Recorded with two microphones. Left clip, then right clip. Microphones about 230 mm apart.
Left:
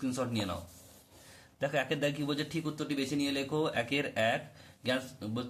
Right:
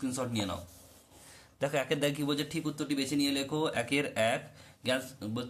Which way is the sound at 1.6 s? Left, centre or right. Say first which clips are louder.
Right 1 dB; centre.